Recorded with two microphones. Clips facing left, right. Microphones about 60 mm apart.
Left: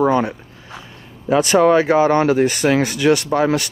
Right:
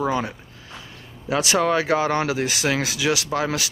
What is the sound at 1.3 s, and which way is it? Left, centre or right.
Speech, centre.